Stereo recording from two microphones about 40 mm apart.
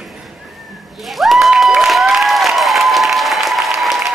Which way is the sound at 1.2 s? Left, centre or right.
Centre.